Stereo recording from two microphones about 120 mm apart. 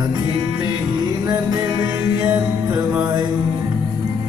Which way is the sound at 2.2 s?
25° right (ahead or behind).